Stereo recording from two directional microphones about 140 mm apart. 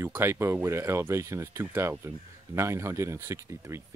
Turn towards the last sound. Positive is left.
turn(degrees=-20)  # may be behind; listen again after turning